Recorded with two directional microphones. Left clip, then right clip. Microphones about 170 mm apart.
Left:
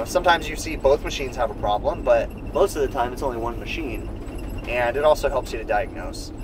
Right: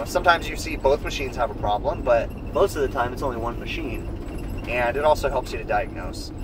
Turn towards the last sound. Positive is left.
turn(degrees=10)  # may be behind; listen again after turning